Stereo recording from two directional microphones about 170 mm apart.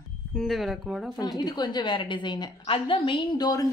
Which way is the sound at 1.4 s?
25° left (ahead or behind).